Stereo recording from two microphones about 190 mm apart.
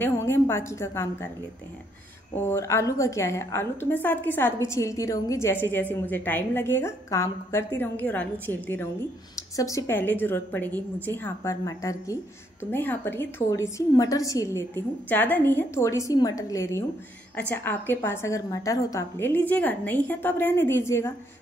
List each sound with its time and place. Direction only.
0.0 s a woman's voice: 15° left (ahead or behind)
2.3 s a woman's voice: 15° left (ahead or behind)